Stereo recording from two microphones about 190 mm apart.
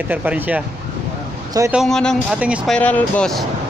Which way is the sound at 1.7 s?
Centre (ahead or behind).